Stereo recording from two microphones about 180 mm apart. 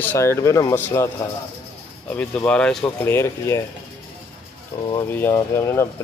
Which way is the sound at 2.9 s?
15° left (ahead or behind).